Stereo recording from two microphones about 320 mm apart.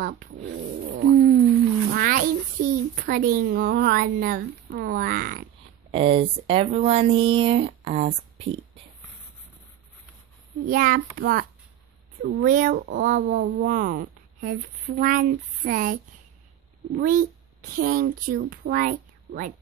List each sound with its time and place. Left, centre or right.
0.0 s speech: right
1.9 s a child's voice: right
10.6 s speech: right